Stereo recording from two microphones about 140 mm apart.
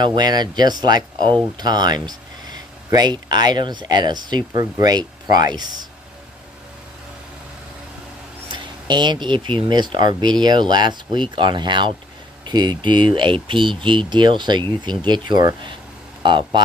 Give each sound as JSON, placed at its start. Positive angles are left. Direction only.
{"t": 0.0, "sound": "speech", "side_deg": -30}
{"t": 8.5, "sound": "speech", "side_deg": -35}